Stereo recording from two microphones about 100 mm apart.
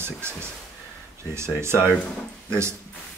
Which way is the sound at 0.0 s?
25° right (ahead or behind).